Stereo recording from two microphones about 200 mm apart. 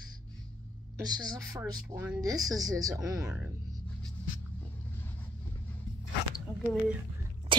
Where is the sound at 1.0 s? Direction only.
20° right (ahead or behind).